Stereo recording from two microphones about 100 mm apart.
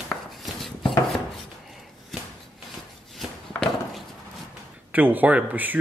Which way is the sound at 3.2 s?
Centre (ahead or behind).